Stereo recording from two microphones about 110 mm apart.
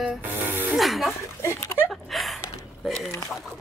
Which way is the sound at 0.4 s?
15° right (ahead or behind).